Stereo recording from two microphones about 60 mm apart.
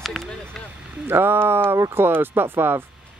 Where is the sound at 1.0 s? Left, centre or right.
Right.